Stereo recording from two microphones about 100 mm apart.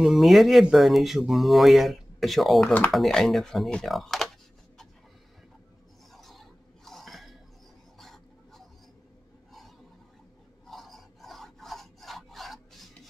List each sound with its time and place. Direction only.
0.0 s speech: centre (ahead or behind)
2.6 s speech: 15° left (ahead or behind)
2.9 s speech: 5° left (ahead or behind)
6.1 s a sound: centre (ahead or behind)
10.7 s filing: centre (ahead or behind)